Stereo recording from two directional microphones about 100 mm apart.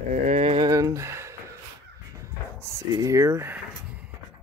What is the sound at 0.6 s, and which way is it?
Speech, 35° right (ahead or behind).